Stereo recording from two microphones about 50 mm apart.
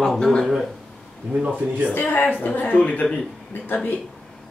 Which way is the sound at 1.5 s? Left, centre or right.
Right.